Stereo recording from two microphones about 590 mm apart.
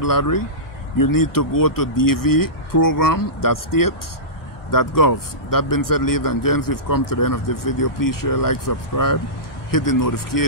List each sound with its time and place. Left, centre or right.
0.0 s a man's voice: left